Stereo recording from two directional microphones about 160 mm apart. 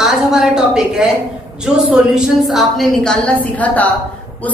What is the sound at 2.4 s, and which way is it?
A woman's voice, centre (ahead or behind).